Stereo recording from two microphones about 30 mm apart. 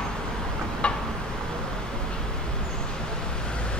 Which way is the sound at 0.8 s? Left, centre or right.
Left.